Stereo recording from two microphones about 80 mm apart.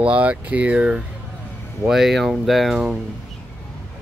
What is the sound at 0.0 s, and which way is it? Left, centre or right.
Speech, centre.